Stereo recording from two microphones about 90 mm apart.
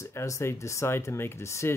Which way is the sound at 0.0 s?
30° left (ahead or behind).